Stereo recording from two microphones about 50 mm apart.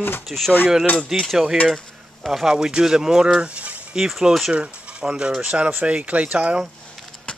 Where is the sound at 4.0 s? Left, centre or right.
Centre.